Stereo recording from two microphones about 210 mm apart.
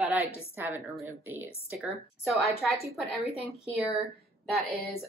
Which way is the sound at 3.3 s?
30° left (ahead or behind).